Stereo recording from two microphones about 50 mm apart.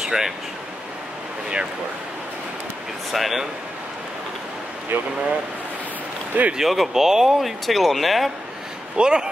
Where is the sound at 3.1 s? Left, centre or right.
Centre.